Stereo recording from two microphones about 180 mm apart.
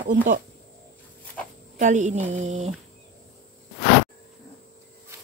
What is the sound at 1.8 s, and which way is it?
Speech, 45° right (ahead or behind).